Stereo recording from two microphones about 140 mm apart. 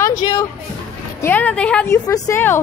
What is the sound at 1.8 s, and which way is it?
Speech, 25° left (ahead or behind).